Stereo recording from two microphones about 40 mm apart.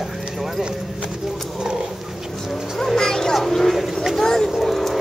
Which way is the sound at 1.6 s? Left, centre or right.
Centre.